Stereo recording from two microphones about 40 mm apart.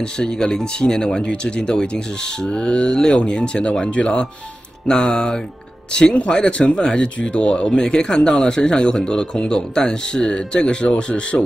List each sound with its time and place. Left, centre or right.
0.0 s speech: left
1.2 s speech: left